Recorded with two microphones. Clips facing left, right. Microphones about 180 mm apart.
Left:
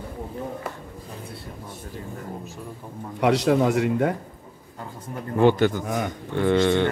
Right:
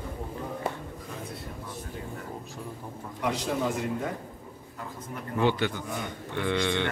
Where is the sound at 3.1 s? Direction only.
75° left (ahead or behind).